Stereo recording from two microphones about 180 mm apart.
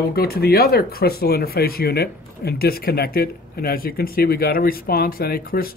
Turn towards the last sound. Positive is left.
turn(degrees=55)  # may be behind; listen again after turning